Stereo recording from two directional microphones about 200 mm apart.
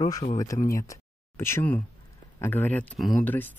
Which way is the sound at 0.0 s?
20° left (ahead or behind).